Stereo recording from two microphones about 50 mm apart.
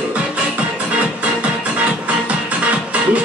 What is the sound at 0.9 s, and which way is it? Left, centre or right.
Music, right.